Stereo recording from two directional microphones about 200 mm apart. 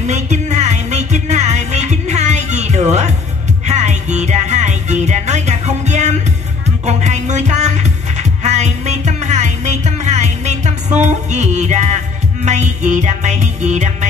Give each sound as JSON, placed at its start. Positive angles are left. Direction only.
{"t": 0.0, "sound": "music", "side_deg": -35}